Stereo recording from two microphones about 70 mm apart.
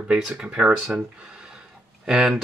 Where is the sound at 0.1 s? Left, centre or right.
Centre.